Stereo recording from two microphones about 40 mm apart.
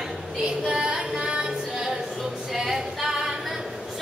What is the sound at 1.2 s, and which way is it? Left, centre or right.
Female singing, right.